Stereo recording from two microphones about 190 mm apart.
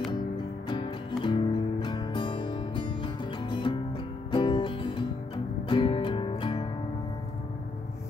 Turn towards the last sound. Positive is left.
turn(degrees=25)  # may be behind; listen again after turning